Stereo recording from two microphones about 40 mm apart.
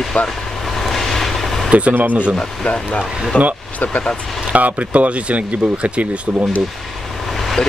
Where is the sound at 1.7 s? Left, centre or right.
Right.